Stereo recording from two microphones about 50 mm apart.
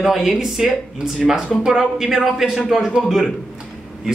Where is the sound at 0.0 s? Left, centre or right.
Centre.